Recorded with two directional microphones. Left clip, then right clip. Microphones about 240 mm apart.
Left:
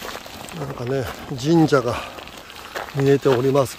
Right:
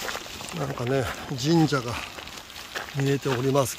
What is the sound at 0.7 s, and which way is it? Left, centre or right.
Speech, centre.